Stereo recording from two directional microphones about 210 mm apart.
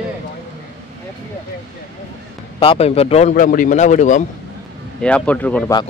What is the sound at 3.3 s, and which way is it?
Speech, 40° left (ahead or behind).